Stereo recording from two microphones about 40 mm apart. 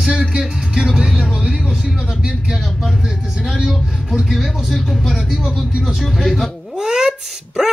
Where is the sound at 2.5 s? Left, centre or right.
Centre.